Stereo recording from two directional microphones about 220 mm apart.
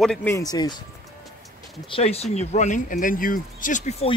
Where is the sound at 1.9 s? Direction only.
30° left (ahead or behind).